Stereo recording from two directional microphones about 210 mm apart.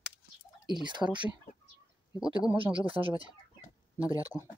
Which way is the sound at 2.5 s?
25° right (ahead or behind).